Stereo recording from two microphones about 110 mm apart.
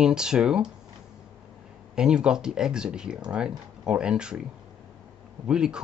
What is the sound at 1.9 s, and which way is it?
Speech, 10° right (ahead or behind).